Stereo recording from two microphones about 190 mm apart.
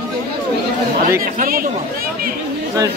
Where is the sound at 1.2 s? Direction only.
50° right (ahead or behind).